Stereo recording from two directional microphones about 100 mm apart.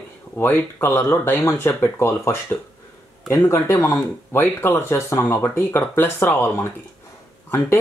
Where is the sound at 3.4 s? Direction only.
25° left (ahead or behind).